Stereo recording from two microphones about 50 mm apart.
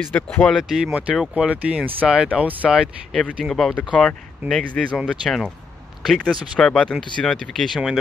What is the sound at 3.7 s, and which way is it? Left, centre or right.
Speech, left.